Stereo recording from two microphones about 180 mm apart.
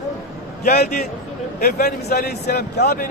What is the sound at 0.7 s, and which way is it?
A man's voice, 50° left (ahead or behind).